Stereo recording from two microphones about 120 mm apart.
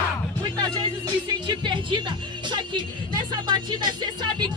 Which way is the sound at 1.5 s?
40° right (ahead or behind).